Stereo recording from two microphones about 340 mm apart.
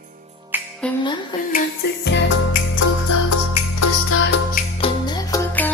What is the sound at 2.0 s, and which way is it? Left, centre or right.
Music, left.